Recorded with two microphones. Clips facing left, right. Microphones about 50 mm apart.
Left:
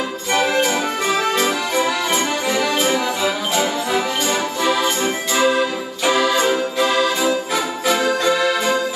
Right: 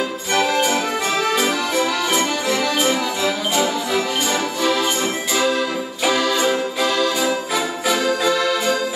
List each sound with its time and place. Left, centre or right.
0.3 s music: centre
2.0 s accordion: centre
2.7 s jingle bell: centre
5.3 s music: left